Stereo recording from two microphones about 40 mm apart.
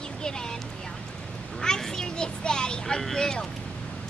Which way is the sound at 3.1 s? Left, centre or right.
Centre.